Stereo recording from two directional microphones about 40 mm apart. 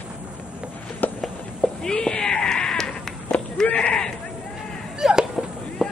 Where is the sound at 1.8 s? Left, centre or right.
Centre.